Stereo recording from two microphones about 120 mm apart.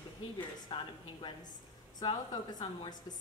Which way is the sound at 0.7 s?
45° left (ahead or behind).